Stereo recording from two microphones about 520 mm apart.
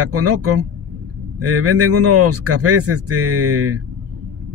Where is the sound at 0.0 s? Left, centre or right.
Right.